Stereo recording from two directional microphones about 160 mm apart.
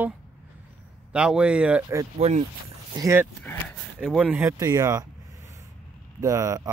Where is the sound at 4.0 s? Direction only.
5° right (ahead or behind).